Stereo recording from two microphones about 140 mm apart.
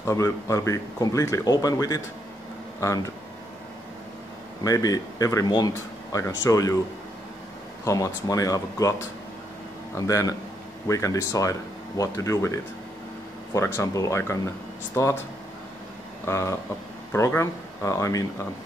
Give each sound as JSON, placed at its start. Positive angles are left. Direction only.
{"t": 0.0, "sound": "speech", "side_deg": 20}
{"t": 4.6, "sound": "speech", "side_deg": 25}
{"t": 7.8, "sound": "speech", "side_deg": 20}
{"t": 9.9, "sound": "speech", "side_deg": 25}
{"t": 16.3, "sound": "speech", "side_deg": 20}